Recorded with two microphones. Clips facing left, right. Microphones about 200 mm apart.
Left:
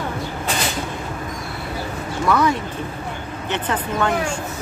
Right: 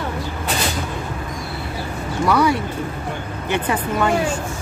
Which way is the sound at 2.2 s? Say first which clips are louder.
Right 1 dB; 10° right (ahead or behind).